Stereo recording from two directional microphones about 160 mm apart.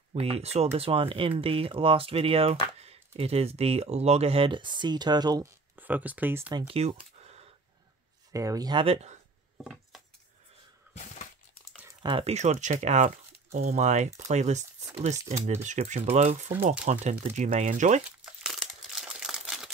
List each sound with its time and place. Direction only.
0.1 s speech: 40° right (ahead or behind)
5.8 s speech: 10° right (ahead or behind)
6.7 s a sound: 40° right (ahead or behind)
8.3 s speech: 20° right (ahead or behind)
8.8 s speech: 40° right (ahead or behind)
12.0 s speech: 30° right (ahead or behind)
12.4 s speech: 50° right (ahead or behind)
18.4 s crumpling: centre (ahead or behind)